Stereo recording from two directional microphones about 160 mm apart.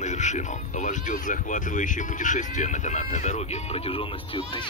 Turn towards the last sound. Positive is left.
turn(degrees=35)  # may be behind; listen again after turning